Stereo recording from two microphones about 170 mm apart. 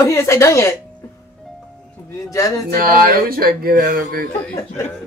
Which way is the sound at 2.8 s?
60° right (ahead or behind).